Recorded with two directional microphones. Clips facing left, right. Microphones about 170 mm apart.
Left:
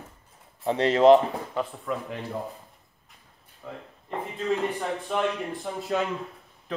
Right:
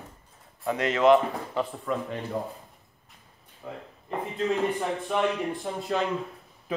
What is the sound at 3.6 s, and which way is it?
Speech, 10° right (ahead or behind).